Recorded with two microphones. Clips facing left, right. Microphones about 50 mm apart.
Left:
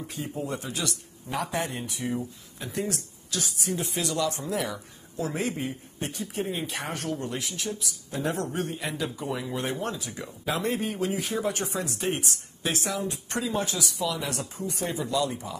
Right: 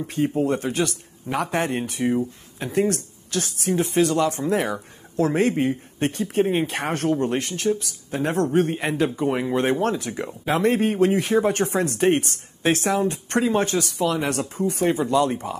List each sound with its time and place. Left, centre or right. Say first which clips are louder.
0.0 s speech: right 11 dB; right